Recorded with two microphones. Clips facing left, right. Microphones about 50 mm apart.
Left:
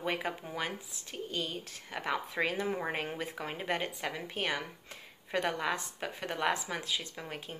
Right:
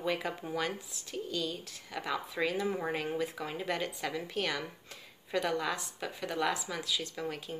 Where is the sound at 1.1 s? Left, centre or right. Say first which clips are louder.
Right 1 dB; left.